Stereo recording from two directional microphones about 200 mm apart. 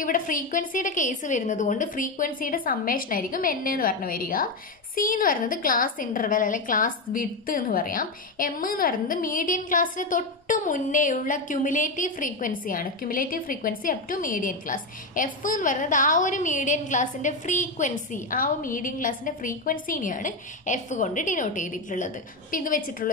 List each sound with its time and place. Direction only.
0.0 s a woman's voice: 40° left (ahead or behind)